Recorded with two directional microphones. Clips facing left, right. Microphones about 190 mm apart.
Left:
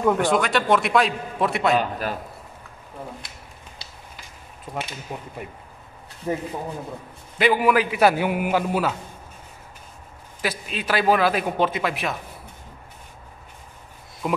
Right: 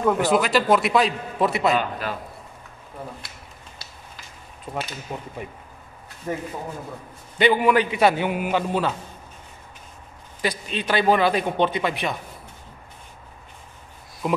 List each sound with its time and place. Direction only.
0.0 s a man's voice: 5° right (ahead or behind)
1.8 s a man's voice: 45° left (ahead or behind)
4.7 s speech: 10° right (ahead or behind)
5.1 s speech: 10° left (ahead or behind)
6.3 s speech: 15° left (ahead or behind)
7.3 s a man's voice: centre (ahead or behind)
10.4 s a man's voice: 5° left (ahead or behind)
14.2 s a man's voice: centre (ahead or behind)